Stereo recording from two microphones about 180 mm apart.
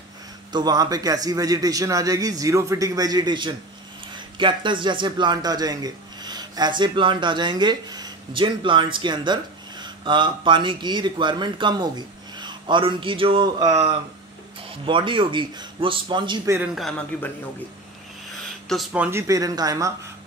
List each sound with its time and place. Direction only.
0.5 s a man's voice: 20° right (ahead or behind)
16.5 s a man's voice: 5° right (ahead or behind)
17.1 s a man's voice: 5° left (ahead or behind)
18.7 s a man's voice: centre (ahead or behind)
19.0 s a man's voice: 15° right (ahead or behind)